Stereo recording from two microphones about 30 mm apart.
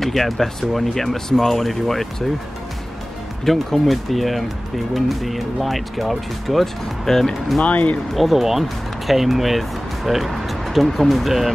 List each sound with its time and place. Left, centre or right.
0.0 s speech: centre
3.4 s speech: centre
7.6 s speech: left
8.1 s speech: centre